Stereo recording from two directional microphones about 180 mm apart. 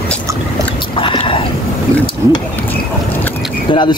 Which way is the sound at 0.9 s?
30° left (ahead or behind).